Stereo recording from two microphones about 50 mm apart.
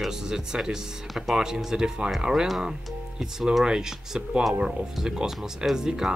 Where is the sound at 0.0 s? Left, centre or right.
Centre.